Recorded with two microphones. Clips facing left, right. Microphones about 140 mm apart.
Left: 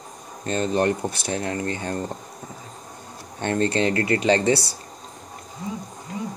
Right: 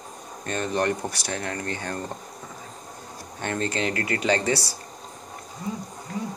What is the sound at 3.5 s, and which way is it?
Speech, 30° left (ahead or behind).